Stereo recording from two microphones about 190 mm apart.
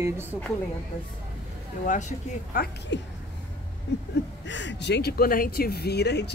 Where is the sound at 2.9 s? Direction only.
70° left (ahead or behind).